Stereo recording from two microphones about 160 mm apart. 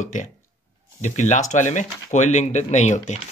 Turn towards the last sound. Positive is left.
turn(degrees=45)  # may be behind; listen again after turning